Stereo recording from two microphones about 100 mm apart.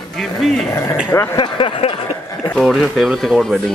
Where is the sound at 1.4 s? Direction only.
60° left (ahead or behind).